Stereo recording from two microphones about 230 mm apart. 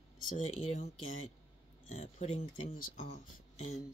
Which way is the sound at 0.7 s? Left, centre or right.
Left.